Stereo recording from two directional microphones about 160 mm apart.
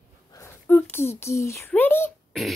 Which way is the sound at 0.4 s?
10° left (ahead or behind).